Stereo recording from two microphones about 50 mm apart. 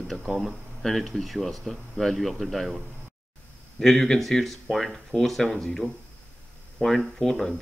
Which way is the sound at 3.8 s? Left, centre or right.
Centre.